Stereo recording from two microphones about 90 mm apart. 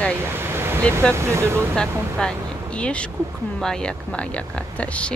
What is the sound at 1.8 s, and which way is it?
Speech, 10° left (ahead or behind).